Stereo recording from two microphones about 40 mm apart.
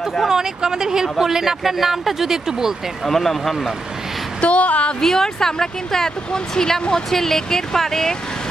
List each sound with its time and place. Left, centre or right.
0.3 s speech: centre
3.1 s speech: centre
4.4 s a woman's voice: left
5.0 s speech: centre